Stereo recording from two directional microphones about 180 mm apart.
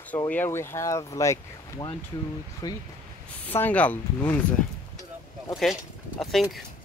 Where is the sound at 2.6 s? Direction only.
20° left (ahead or behind).